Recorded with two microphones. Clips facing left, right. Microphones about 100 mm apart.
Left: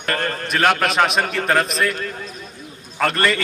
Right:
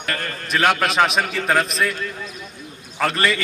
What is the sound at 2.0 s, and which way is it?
Speech, 45° left (ahead or behind).